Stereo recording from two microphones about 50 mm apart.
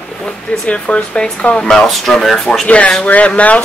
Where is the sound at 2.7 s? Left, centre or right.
Left.